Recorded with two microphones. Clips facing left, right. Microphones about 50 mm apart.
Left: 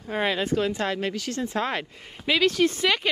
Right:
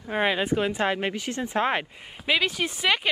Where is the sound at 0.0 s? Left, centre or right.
Centre.